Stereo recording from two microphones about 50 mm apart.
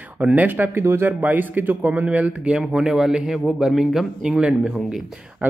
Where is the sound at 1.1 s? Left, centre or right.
Right.